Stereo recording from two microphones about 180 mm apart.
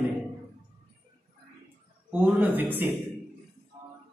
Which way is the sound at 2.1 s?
10° right (ahead or behind).